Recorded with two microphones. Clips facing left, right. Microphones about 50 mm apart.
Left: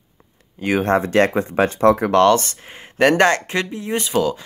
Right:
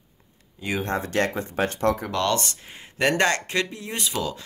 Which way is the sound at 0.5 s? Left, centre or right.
Left.